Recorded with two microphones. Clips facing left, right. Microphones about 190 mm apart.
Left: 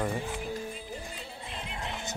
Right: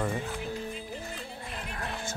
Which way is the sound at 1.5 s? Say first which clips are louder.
Even; 20° left (ahead or behind).